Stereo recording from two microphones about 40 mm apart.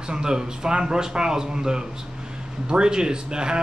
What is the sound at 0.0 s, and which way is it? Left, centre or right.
A man's voice, centre.